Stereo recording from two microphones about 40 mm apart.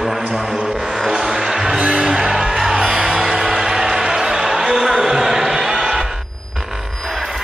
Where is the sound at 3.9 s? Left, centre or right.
Right.